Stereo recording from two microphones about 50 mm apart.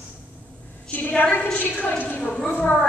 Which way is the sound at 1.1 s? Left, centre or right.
Left.